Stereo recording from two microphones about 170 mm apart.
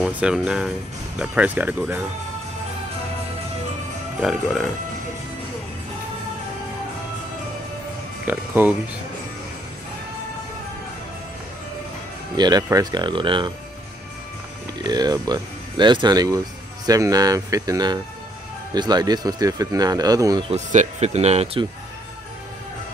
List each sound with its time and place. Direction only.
0.0 s speech: 5° right (ahead or behind)
4.2 s speech: centre (ahead or behind)
8.3 s speech: 10° right (ahead or behind)
12.4 s speech: 25° right (ahead or behind)
14.8 s speech: 25° right (ahead or behind)
20.4 s speech: 45° right (ahead or behind)